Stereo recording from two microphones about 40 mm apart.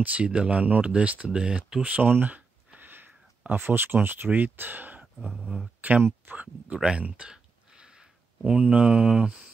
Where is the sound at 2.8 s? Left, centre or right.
Right.